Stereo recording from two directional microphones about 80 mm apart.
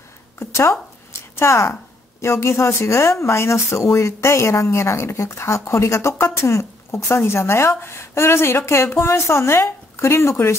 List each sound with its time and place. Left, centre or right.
0.4 s speech: left